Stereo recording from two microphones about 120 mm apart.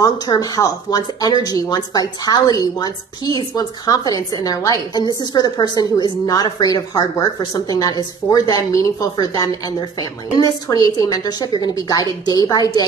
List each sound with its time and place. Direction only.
0.0 s speech: 30° left (ahead or behind)